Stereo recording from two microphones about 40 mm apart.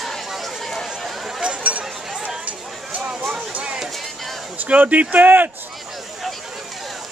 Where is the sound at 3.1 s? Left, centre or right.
Right.